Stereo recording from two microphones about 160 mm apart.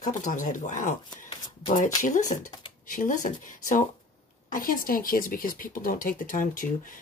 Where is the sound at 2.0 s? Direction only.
55° left (ahead or behind).